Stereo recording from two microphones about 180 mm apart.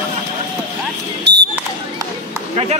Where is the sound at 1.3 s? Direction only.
70° right (ahead or behind).